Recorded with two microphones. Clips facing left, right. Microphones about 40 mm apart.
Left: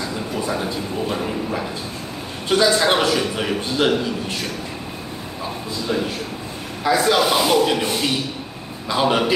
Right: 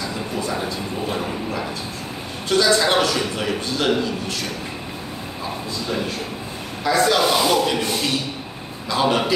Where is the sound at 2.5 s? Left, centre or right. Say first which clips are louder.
Left 1 dB; centre.